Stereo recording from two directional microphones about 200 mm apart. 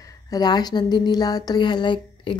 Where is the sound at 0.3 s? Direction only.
20° left (ahead or behind).